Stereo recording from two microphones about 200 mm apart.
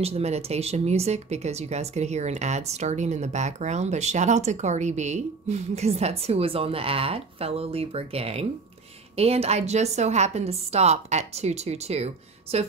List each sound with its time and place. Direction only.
0.0 s speech: 30° right (ahead or behind)